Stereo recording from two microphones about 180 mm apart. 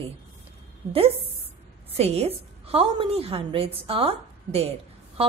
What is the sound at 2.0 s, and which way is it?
A woman's voice, 35° right (ahead or behind).